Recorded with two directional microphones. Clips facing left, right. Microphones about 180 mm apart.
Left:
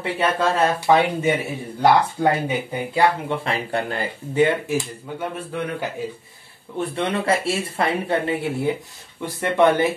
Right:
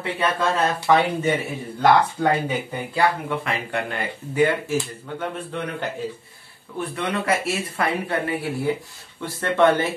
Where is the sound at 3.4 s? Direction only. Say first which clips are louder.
Left 2 dB; 30° left (ahead or behind).